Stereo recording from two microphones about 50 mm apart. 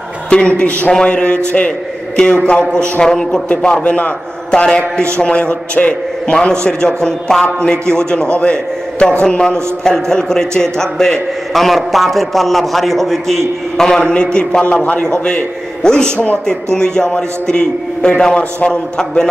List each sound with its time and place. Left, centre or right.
0.3 s a man's voice: centre
6.4 s a man's voice: centre
15.2 s a man's voice: centre